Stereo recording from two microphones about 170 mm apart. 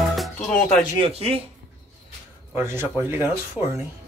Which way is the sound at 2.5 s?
15° right (ahead or behind).